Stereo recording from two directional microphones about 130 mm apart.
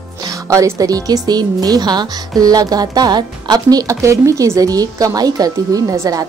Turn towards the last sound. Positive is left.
turn(degrees=-25)  # may be behind; listen again after turning